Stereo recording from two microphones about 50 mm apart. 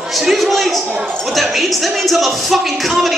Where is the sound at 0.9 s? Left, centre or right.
Right.